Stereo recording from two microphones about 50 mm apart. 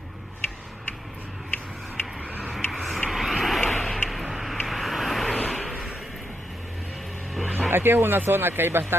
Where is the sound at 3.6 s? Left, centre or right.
Centre.